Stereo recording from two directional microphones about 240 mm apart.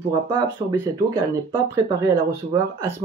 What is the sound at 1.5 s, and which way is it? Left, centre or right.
Speech, centre.